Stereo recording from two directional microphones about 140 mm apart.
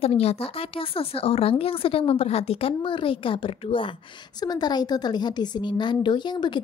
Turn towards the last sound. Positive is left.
turn(degrees=30)  # may be behind; listen again after turning